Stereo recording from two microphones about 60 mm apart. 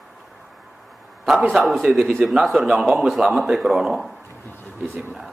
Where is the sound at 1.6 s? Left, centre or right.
Centre.